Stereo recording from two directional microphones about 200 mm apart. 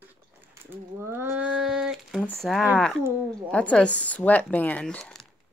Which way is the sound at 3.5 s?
5° left (ahead or behind).